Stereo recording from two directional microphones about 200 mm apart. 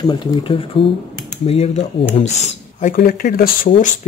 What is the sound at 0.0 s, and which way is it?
Speech, 25° left (ahead or behind).